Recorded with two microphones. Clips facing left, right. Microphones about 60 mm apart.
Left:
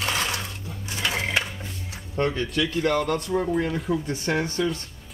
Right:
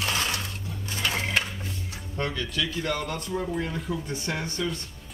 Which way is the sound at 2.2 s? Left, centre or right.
Left.